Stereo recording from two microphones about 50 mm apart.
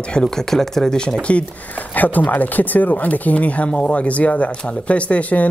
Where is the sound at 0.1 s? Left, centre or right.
Centre.